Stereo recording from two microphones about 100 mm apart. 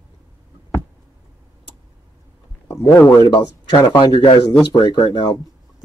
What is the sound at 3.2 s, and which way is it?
Speech, 45° left (ahead or behind).